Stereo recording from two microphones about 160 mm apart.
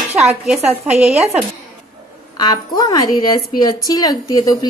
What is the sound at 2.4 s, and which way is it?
A woman's voice, 25° left (ahead or behind).